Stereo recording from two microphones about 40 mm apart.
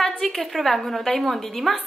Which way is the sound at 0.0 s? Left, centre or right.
Centre.